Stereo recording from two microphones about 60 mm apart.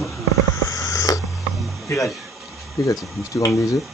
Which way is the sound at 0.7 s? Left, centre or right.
Left.